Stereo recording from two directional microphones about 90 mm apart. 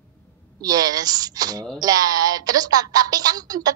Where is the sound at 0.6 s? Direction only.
45° right (ahead or behind).